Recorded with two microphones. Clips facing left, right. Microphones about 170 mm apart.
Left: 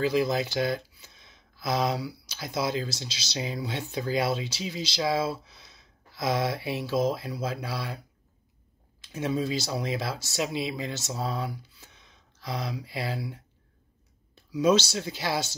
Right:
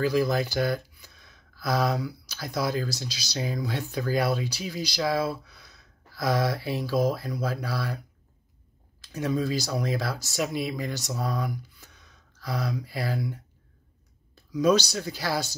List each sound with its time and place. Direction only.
0.0 s speech: 20° left (ahead or behind)
9.0 s speech: 20° left (ahead or behind)
14.6 s speech: 25° left (ahead or behind)